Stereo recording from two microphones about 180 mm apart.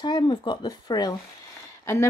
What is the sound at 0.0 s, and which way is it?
Speech, 25° left (ahead or behind).